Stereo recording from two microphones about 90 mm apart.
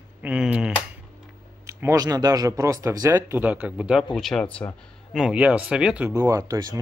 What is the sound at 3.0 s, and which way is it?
Speech, 25° right (ahead or behind).